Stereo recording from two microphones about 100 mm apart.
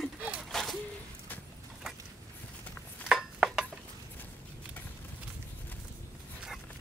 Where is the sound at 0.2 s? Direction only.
10° right (ahead or behind).